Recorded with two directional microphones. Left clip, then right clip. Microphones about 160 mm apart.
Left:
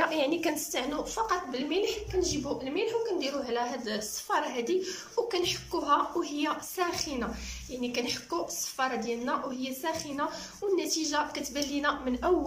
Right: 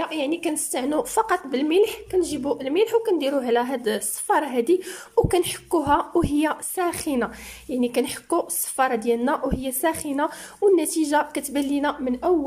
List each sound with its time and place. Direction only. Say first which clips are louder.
0.0 s a woman's voice: right 2 dB; 20° right (ahead or behind)
0.7 s a woman's voice: right 9 dB; 45° right (ahead or behind)